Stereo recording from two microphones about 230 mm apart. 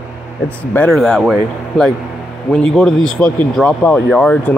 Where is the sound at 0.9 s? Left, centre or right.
Centre.